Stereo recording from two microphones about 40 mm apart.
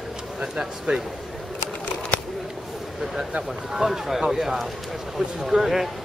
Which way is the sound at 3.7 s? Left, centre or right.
Centre.